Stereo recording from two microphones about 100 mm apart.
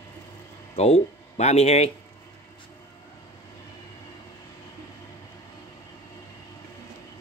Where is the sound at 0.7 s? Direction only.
90° left.